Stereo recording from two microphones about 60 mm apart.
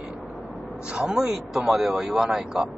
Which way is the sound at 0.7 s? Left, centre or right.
Centre.